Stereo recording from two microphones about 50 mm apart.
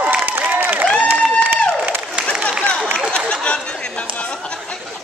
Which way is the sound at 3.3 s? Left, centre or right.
Left.